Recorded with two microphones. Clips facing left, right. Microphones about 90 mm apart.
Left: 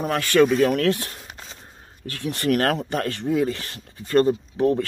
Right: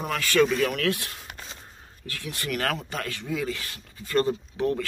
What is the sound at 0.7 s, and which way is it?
Speech, 40° left (ahead or behind).